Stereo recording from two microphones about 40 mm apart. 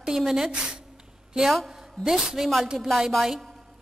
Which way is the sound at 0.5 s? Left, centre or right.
Centre.